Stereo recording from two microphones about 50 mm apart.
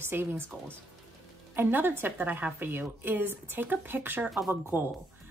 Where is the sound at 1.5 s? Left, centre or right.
Right.